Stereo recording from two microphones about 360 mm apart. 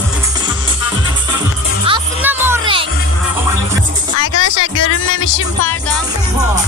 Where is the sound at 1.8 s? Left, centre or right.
Centre.